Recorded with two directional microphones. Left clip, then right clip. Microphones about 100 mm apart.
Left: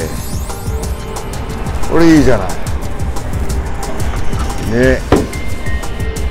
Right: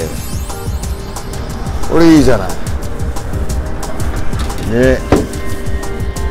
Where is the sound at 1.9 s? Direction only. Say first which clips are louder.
Right 1 dB; 25° right (ahead or behind).